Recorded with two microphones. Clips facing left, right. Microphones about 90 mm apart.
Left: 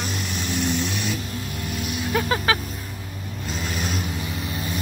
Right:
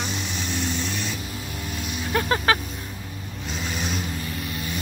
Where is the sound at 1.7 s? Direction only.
5° left (ahead or behind).